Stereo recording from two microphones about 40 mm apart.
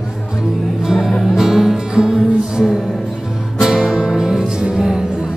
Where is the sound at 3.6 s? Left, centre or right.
Centre.